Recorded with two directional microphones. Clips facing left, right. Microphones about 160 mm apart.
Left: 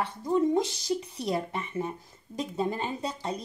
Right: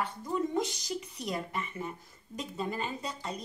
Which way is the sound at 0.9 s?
35° left (ahead or behind).